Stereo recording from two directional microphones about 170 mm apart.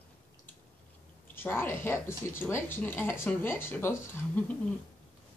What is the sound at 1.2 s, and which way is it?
A woman's voice, 15° left (ahead or behind).